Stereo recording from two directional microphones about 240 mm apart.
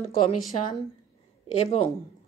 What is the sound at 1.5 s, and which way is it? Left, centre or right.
Speech, left.